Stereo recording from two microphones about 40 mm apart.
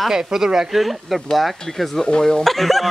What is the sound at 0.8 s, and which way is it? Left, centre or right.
Speech, centre.